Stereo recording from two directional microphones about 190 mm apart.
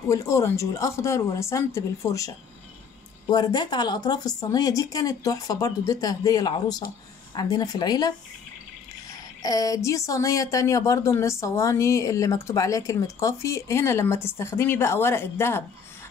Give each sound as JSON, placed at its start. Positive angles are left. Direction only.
{"t": 0.1, "sound": "speech", "side_deg": 15}
{"t": 9.4, "sound": "speech", "side_deg": 20}